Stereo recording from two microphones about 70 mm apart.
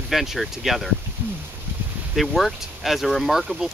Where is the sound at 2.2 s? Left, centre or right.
Centre.